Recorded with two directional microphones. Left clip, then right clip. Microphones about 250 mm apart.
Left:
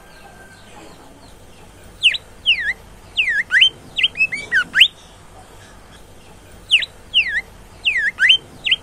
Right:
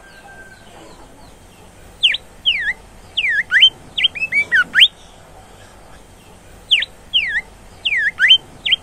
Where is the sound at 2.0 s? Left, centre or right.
Centre.